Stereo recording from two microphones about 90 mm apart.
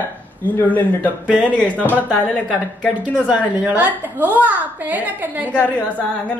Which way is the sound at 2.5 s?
10° right (ahead or behind).